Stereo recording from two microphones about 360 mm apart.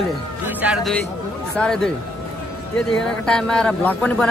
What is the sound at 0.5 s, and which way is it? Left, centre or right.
A man's voice, centre.